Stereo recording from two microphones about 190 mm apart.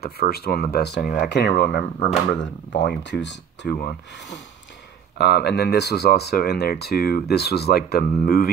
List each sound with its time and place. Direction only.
0.0 s speech: 55° left (ahead or behind)
5.1 s speech: 60° left (ahead or behind)